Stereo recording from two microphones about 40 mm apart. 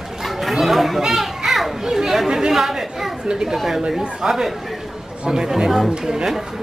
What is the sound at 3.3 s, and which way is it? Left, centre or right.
Speech, centre.